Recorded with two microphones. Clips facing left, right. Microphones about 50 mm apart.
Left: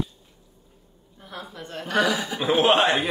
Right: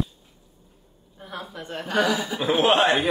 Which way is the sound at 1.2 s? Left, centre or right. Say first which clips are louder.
Right 2 dB; right.